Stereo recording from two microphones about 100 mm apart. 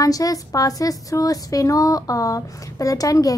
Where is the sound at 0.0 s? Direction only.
35° left (ahead or behind).